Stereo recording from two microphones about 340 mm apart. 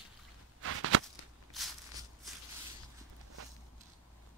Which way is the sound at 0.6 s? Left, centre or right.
Right.